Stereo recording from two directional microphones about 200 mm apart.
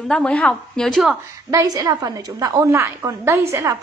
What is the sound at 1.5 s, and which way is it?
A woman's voice, 15° right (ahead or behind).